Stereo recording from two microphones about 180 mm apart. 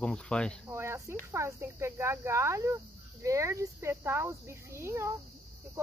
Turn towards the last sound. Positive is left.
turn(degrees=-15)  # may be behind; listen again after turning